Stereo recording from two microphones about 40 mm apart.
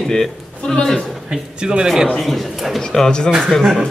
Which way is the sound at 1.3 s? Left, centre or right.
Right.